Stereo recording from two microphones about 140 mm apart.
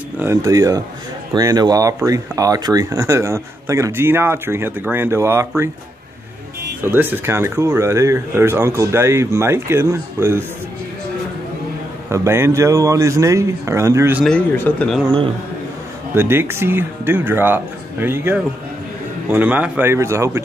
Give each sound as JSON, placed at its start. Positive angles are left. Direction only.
{"t": 0.2, "sound": "speech", "side_deg": -20}
{"t": 6.8, "sound": "speech", "side_deg": -15}
{"t": 12.1, "sound": "speech", "side_deg": -20}
{"t": 14.2, "sound": "speech", "side_deg": 10}
{"t": 16.2, "sound": "speech", "side_deg": -15}